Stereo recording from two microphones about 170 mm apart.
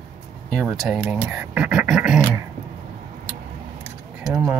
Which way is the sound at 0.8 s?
5° right (ahead or behind).